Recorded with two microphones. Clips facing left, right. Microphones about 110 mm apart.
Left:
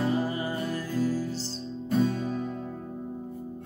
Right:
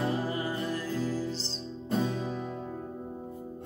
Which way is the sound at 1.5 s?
25° right (ahead or behind).